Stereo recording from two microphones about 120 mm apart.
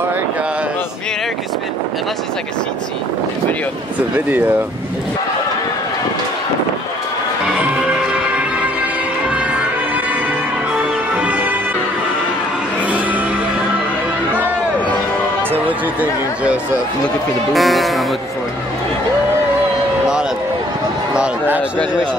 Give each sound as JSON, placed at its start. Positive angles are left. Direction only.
{"t": 7.5, "sound": "music", "side_deg": -10}
{"t": 11.1, "sound": "music", "side_deg": -15}
{"t": 15.6, "sound": "speech", "side_deg": -15}
{"t": 17.6, "sound": "speech", "side_deg": 0}
{"t": 21.1, "sound": "speech", "side_deg": -10}